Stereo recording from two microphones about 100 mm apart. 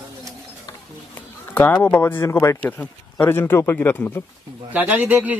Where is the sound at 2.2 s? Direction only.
30° left (ahead or behind).